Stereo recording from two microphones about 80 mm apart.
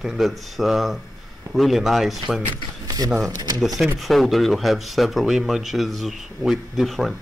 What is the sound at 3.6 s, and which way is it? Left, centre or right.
Speech, centre.